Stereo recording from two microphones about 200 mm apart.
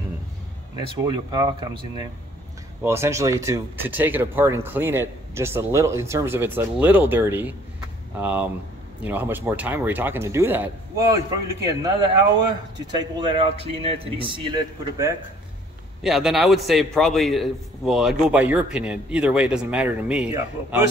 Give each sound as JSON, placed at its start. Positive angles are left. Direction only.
{"t": 0.7, "sound": "speech", "side_deg": -20}
{"t": 12.9, "sound": "speech", "side_deg": -25}
{"t": 16.0, "sound": "a man's voice", "side_deg": 0}